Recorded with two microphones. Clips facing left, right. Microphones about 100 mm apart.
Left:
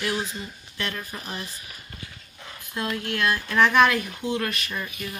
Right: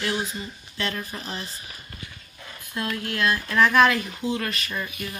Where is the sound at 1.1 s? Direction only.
10° left (ahead or behind).